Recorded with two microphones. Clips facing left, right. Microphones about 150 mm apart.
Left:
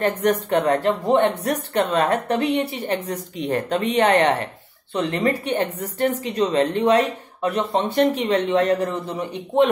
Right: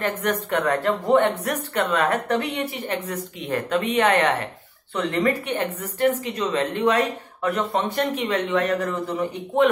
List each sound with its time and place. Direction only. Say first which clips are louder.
0.3 s a woman's voice: left 3 dB; 35° left (ahead or behind)